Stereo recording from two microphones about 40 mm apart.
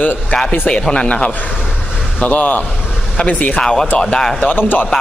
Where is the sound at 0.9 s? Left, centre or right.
Left.